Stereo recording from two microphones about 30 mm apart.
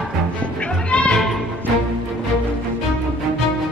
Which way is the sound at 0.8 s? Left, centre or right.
Left.